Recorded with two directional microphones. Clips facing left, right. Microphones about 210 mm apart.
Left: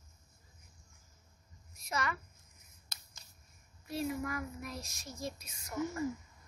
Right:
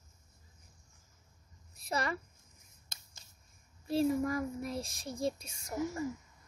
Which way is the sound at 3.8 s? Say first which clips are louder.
Right 7 dB; 30° right (ahead or behind).